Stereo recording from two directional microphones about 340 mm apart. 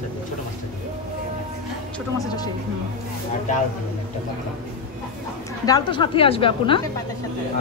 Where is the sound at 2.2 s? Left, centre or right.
Centre.